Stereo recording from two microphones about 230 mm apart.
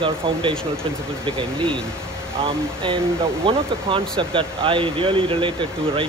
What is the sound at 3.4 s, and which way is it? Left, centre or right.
Speech, right.